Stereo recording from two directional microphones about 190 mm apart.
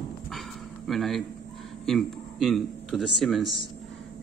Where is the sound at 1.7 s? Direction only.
Centre (ahead or behind).